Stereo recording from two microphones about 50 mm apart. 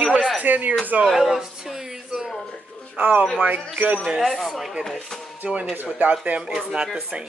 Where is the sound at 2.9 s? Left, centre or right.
Right.